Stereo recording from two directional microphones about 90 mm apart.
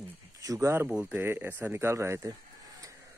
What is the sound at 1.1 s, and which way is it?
A man's voice, 25° right (ahead or behind).